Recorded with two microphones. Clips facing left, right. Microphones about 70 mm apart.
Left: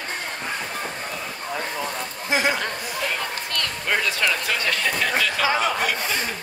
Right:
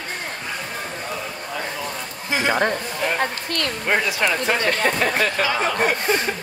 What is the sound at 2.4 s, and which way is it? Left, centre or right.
Speech, right.